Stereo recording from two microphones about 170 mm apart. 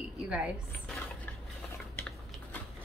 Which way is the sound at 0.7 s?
10° left (ahead or behind).